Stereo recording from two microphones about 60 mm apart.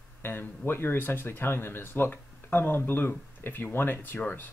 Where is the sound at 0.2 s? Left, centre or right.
Left.